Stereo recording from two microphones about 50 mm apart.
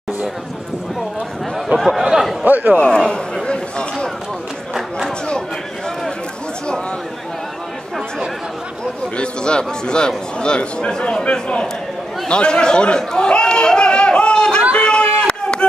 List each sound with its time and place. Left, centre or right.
1.8 s speech: centre
2.0 s a sound: centre
2.4 s a man's voice: right
2.8 s a man's voice: centre
3.4 s run: centre
4.7 s a sound: centre
9.1 s a man's voice: centre
12.3 s chatter: centre
14.7 s a sound: left